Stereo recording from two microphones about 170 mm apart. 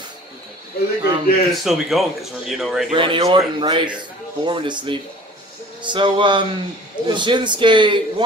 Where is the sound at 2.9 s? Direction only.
30° right (ahead or behind).